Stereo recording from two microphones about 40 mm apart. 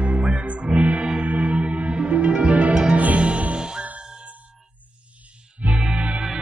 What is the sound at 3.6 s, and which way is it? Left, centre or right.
Music, right.